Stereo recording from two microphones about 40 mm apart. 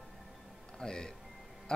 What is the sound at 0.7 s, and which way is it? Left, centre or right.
Music, centre.